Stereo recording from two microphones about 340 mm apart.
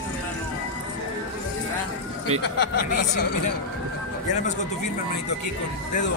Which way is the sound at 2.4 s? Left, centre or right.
Left.